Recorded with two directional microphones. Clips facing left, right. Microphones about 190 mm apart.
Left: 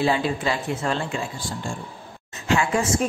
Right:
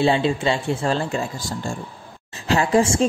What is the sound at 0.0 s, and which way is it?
A woman's voice, 25° right (ahead or behind).